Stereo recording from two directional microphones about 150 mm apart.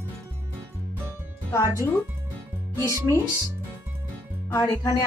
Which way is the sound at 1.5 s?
20° left (ahead or behind).